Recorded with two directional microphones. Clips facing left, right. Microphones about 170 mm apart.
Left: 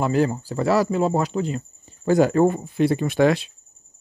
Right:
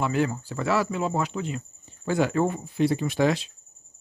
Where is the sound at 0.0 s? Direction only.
35° left (ahead or behind).